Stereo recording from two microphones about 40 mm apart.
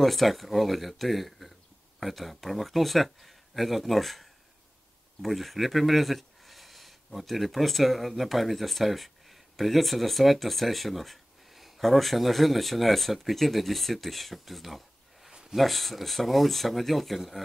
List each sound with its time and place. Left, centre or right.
0.0 s speech: centre